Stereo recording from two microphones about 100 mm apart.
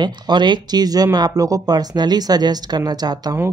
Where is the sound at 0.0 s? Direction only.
50° right (ahead or behind).